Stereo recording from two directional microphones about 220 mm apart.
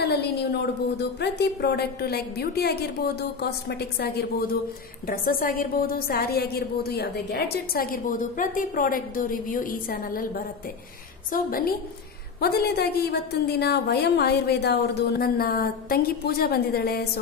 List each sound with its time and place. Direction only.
0.0 s a woman's voice: 50° left (ahead or behind)
11.3 s a woman's voice: 40° left (ahead or behind)